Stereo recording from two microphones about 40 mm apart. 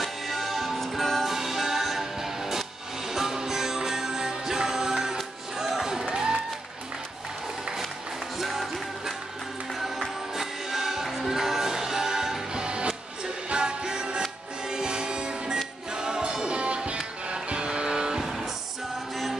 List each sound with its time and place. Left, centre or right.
0.0 s music: centre
8.4 s music: centre